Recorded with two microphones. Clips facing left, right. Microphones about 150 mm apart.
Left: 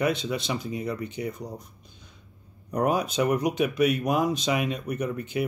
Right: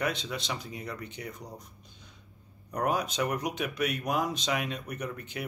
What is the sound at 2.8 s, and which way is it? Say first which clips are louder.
Speech: left 5 dB; 10° left (ahead or behind).